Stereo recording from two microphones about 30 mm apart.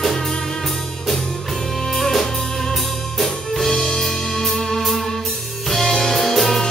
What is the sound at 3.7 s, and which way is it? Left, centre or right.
Music, centre.